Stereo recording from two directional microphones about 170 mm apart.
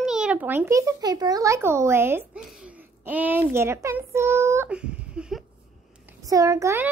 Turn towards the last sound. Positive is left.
turn(degrees=-15)  # may be behind; listen again after turning